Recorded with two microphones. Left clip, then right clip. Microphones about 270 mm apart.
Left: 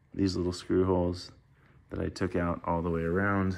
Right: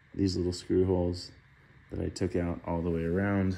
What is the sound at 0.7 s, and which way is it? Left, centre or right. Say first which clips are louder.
Speech: left 1 dB; left.